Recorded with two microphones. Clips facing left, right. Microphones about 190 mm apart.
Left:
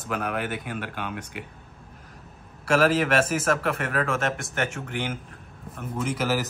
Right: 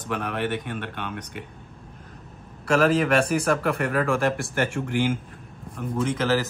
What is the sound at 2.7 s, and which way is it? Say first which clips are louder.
Speech: right 1 dB; 5° left (ahead or behind).